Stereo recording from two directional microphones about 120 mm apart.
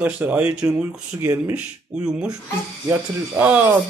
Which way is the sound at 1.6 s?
10° right (ahead or behind).